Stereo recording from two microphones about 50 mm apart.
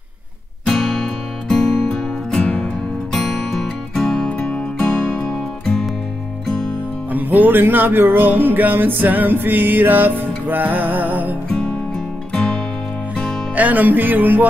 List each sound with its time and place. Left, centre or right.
0.7 s music: centre
4.3 s music: left
7.1 s music: right
13.6 s music: right